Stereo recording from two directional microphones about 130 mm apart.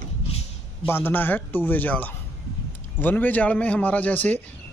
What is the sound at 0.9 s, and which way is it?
Speech, 15° left (ahead or behind).